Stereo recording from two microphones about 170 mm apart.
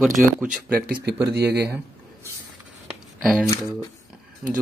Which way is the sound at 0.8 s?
60° right (ahead or behind).